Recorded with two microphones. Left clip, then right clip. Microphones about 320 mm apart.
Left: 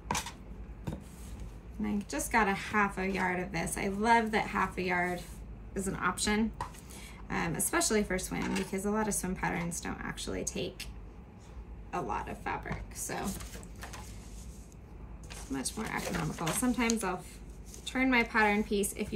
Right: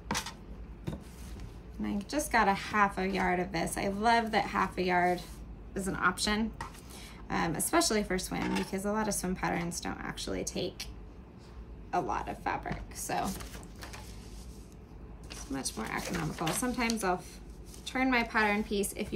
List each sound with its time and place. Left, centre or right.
1.8 s a woman's voice: centre
11.9 s speech: centre
13.3 s speech: right
13.7 s a sound: centre
15.2 s a woman's voice: centre